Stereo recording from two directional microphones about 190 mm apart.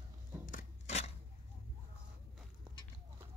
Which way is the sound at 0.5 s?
40° left (ahead or behind).